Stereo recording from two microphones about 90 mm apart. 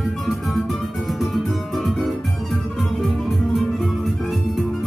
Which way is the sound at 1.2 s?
Centre (ahead or behind).